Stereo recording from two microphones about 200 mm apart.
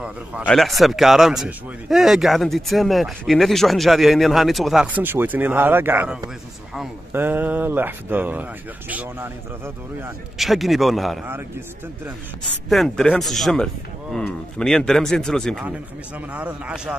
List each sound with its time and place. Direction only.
0.0 s a man's voice: 5° right (ahead or behind)
10.3 s a man's voice: centre (ahead or behind)
12.6 s a man's voice: centre (ahead or behind)